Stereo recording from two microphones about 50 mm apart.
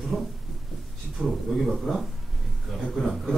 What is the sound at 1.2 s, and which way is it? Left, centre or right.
A man's voice, centre.